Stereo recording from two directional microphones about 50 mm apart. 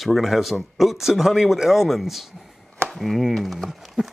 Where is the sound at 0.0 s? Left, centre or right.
Centre.